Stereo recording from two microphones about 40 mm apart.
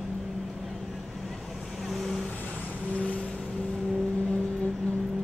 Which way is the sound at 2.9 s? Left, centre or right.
Left.